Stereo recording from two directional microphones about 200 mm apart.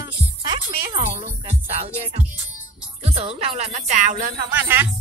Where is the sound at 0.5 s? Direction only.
20° right (ahead or behind); by 4.5 s 45° right (ahead or behind).